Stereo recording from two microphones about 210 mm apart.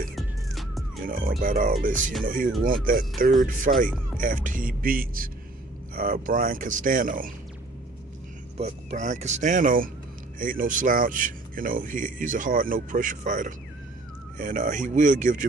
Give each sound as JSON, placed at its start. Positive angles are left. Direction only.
{"t": 0.1, "sound": "music", "side_deg": 0}
{"t": 1.4, "sound": "speech", "side_deg": -40}
{"t": 8.5, "sound": "speech", "side_deg": -35}